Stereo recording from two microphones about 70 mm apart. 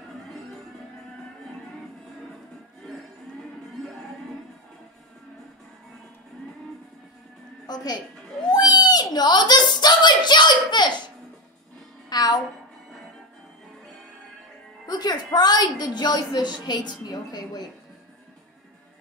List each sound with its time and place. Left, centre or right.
7.6 s a woman's voice: left
8.5 s speech: left
12.1 s a woman's voice: left
14.9 s a woman's voice: left